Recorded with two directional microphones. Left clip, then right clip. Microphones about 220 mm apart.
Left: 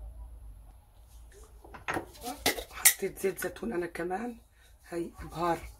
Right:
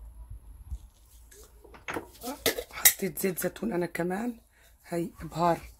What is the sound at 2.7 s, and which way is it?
Speech, 45° right (ahead or behind).